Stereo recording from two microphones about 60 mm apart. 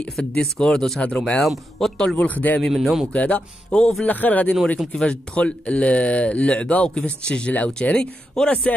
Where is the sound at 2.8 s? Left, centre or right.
Centre.